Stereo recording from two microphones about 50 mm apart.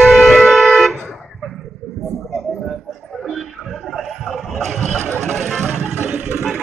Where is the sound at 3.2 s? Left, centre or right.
Centre.